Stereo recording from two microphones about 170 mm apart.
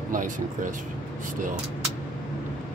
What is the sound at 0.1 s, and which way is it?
Speech, 50° right (ahead or behind).